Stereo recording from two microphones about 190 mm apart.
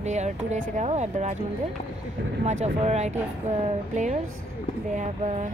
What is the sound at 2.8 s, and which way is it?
Speech, 35° right (ahead or behind).